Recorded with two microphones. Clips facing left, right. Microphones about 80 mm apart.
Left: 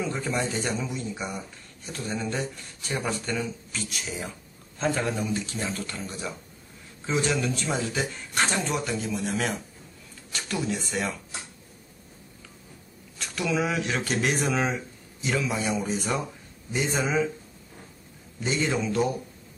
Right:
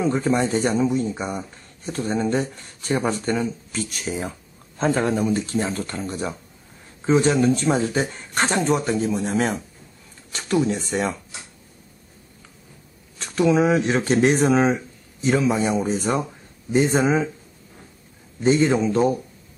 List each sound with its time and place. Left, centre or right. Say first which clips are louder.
0.0 s speech: right 8 dB; right
13.2 s speech: right 9 dB; right
18.4 s speech: right 9 dB; right